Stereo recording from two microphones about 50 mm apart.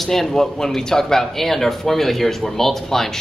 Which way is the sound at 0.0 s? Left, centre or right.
Centre.